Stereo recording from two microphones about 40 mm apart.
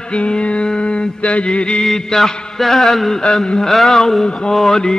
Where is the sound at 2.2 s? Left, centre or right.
Centre.